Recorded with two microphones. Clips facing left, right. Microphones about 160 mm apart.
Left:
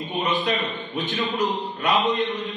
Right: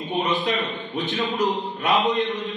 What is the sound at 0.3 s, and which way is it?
A man's voice, centre (ahead or behind).